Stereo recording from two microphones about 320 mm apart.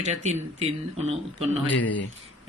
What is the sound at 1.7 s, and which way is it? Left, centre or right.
Speech, left.